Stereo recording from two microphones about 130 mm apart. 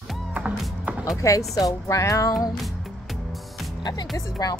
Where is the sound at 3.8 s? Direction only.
30° left (ahead or behind).